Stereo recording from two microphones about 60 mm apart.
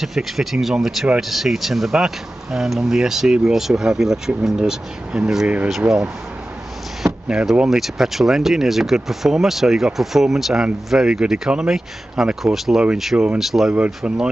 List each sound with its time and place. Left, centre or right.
0.0 s speech: centre
7.5 s speech: centre
14.0 s speech: centre